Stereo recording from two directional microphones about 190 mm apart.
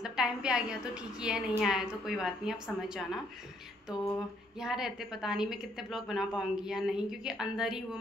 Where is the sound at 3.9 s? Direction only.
15° left (ahead or behind).